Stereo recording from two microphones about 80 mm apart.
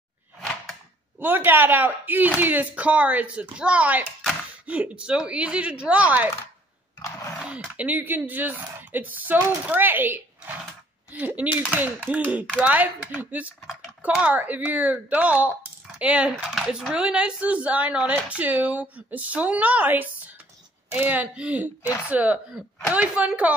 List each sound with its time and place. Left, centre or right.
0.4 s a sound: centre
1.2 s speech: right
7.7 s speech: right
16.5 s speech: centre